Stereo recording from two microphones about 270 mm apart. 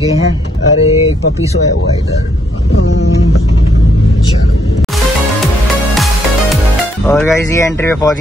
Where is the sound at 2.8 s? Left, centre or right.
Left.